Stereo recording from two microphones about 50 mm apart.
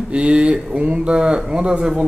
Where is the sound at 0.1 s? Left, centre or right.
Right.